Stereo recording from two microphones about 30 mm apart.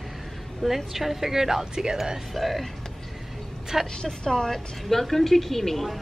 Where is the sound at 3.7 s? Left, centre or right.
Centre.